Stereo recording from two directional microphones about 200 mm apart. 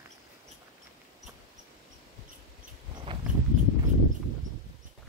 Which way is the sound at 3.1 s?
25° right (ahead or behind).